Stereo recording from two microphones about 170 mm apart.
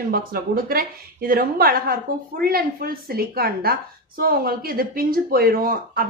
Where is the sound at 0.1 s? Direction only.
60° right (ahead or behind).